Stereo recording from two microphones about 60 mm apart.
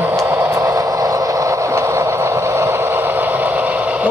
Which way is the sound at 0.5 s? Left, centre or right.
Right.